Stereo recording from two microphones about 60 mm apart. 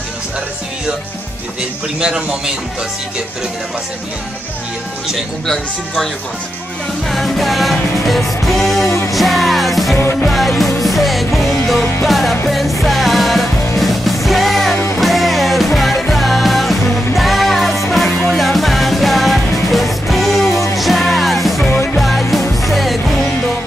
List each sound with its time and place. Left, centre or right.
2.0 s speech: centre
7.1 s music: centre
21.6 s music: left
22.0 s music: centre